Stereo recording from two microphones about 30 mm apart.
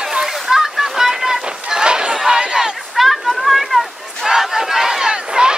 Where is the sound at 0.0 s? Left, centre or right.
Right.